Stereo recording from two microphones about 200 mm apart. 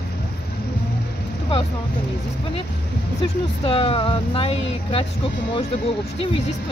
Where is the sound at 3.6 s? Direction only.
30° left (ahead or behind).